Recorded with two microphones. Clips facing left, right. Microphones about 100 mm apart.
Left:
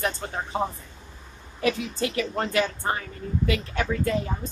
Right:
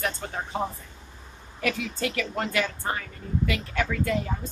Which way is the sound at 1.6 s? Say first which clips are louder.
Left 3 dB; 30° left (ahead or behind).